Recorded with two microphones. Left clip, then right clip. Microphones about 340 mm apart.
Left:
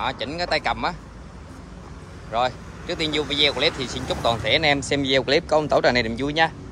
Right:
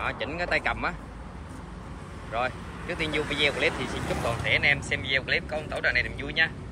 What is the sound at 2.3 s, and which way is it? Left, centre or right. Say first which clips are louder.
Speech: left 6 dB; centre.